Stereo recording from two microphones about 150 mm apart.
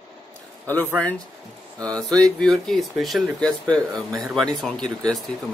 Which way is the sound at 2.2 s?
5° left (ahead or behind).